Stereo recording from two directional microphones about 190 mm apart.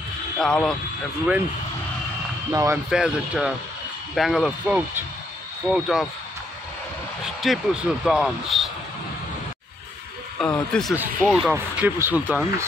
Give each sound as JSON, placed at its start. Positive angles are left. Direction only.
{"t": 0.4, "sound": "speech", "side_deg": 5}
{"t": 2.5, "sound": "speech", "side_deg": -15}
{"t": 2.9, "sound": "speech", "side_deg": -5}
{"t": 7.4, "sound": "speech", "side_deg": 0}
{"t": 10.4, "sound": "speech", "side_deg": 5}